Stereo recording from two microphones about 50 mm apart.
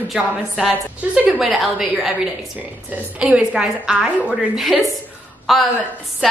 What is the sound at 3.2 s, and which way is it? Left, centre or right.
Speech, right.